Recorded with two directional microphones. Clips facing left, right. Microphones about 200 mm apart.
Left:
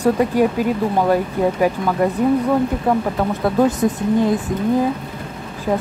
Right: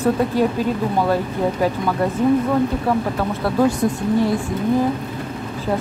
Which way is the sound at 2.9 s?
15° left (ahead or behind).